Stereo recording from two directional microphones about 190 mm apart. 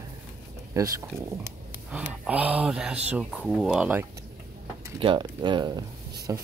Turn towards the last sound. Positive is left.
turn(degrees=-15)  # may be behind; listen again after turning